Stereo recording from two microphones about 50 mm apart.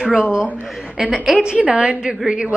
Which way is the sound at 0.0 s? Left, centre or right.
Centre.